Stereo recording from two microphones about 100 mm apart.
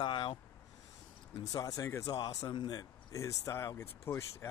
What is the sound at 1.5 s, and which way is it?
Speech, 35° left (ahead or behind).